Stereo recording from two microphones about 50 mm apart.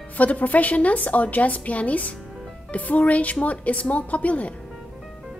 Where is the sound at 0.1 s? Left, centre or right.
Left.